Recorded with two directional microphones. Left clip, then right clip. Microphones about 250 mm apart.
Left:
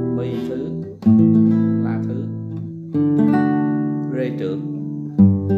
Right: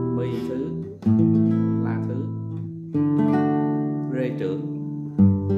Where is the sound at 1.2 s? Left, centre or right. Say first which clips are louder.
Left 3 dB; centre.